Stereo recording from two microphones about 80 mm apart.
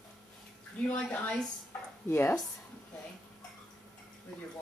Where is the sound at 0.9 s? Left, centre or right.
Centre.